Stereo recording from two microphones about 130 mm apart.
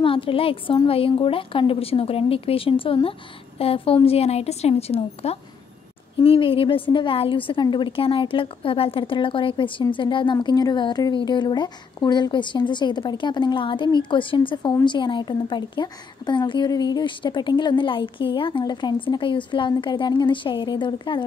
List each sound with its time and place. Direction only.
0.0 s a woman's voice: 45° left (ahead or behind)